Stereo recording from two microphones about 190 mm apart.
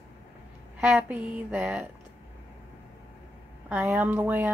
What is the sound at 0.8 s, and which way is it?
Speech, 5° right (ahead or behind).